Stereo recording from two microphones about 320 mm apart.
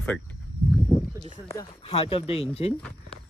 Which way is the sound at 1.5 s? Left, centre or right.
Centre.